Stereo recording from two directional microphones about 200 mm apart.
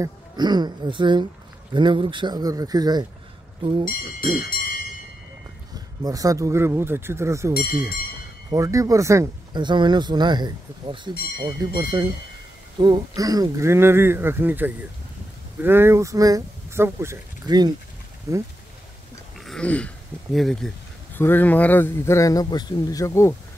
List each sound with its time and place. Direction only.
0.0 s speech: 20° right (ahead or behind)
6.0 s speech: 15° right (ahead or behind)
19.4 s throat clearing: 5° left (ahead or behind)
20.3 s a man's voice: centre (ahead or behind)